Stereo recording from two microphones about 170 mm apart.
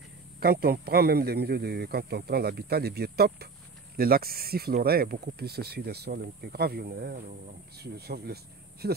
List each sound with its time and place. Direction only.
0.4 s speech: 65° right (ahead or behind)